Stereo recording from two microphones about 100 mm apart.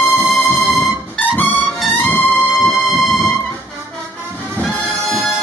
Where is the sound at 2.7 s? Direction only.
Centre (ahead or behind).